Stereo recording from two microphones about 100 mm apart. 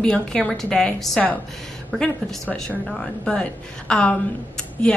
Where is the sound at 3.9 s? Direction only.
10° left (ahead or behind).